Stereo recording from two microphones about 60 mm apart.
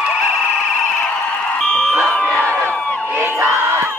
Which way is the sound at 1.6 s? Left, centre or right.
Left.